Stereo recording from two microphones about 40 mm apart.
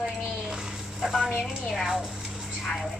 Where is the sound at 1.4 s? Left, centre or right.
Centre.